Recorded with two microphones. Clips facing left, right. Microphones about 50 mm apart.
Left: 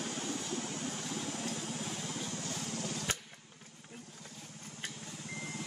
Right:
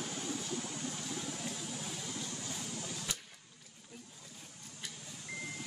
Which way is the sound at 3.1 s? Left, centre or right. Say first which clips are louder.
Left 6 dB; left.